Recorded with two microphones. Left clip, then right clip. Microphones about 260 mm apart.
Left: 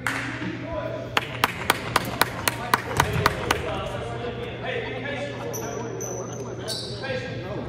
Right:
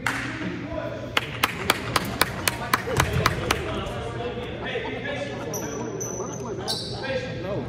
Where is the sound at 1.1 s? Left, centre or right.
Left.